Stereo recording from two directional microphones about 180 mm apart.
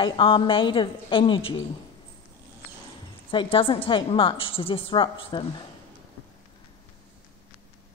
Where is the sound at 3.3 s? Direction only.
30° left (ahead or behind).